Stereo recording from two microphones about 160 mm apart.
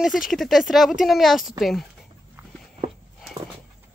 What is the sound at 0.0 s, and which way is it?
Speech, centre (ahead or behind).